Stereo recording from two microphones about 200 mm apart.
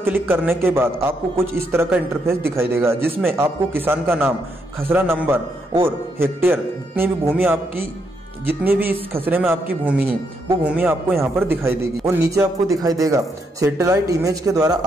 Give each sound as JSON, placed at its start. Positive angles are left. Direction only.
{"t": 0.0, "sound": "a man's voice", "side_deg": -10}